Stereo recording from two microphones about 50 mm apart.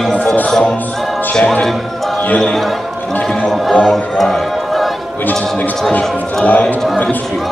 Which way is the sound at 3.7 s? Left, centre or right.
Centre.